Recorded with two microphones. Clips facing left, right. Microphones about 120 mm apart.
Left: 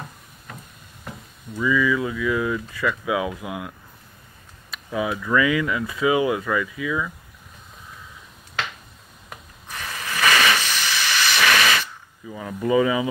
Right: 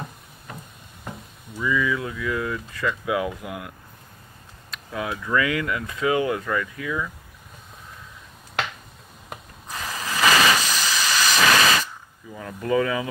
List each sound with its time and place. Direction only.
1.6 s speech: centre (ahead or behind)
9.8 s a sound: 30° right (ahead or behind)
10.6 s hiss: 35° right (ahead or behind)
12.3 s speech: 10° left (ahead or behind)